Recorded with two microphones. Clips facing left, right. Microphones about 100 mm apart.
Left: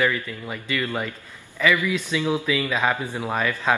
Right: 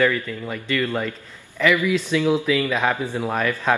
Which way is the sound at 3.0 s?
15° right (ahead or behind).